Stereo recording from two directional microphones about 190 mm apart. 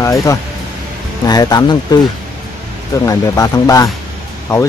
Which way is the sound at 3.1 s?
20° left (ahead or behind).